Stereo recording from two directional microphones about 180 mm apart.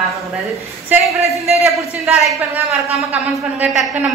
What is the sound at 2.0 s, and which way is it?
Speech, 5° right (ahead or behind).